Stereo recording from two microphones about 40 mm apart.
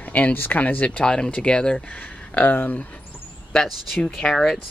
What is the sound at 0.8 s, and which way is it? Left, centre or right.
Speech, left.